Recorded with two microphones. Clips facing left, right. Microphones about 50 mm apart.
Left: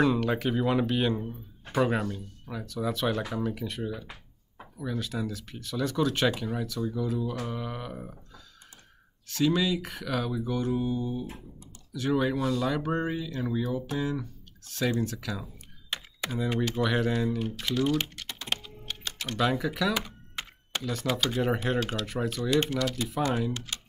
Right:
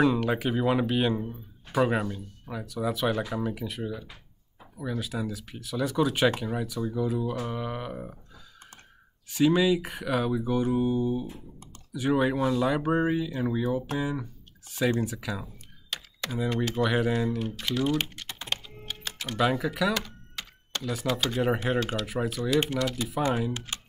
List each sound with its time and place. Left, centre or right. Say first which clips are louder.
0.0 s speech: right 1 dB; centre
9.3 s speech: right 4 dB; centre
15.9 s computer keyboard: left 1 dB; left
16.7 s speech: right 3 dB; centre
19.9 s computer keyboard: right 1 dB; centre
20.8 s speech: right 1 dB; centre
23.5 s speech: right 1 dB; right